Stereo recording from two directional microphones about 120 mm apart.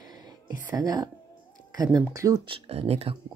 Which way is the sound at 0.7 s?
30° right (ahead or behind).